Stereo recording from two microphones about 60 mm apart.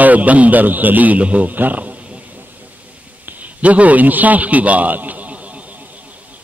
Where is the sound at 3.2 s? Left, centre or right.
Right.